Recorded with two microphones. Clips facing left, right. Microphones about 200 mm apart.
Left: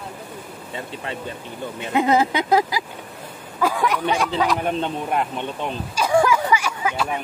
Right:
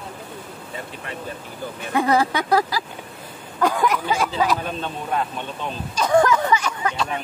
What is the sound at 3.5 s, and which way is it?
Speech, centre (ahead or behind).